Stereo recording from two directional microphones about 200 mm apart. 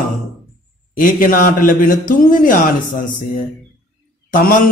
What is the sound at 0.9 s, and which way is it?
A man's voice, 45° left (ahead or behind).